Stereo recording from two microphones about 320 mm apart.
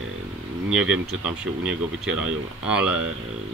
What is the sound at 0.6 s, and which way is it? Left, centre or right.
Speech, centre.